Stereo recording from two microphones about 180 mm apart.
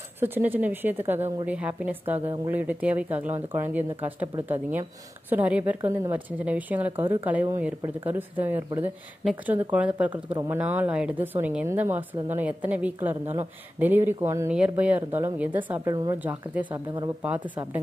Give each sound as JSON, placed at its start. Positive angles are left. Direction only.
{"t": 0.2, "sound": "a woman's voice", "side_deg": -10}
{"t": 10.3, "sound": "speech", "side_deg": -20}
{"t": 10.6, "sound": "a woman's voice", "side_deg": -10}
{"t": 15.9, "sound": "speech", "side_deg": -20}
{"t": 16.2, "sound": "a woman's voice", "side_deg": -10}
{"t": 16.7, "sound": "speech", "side_deg": -25}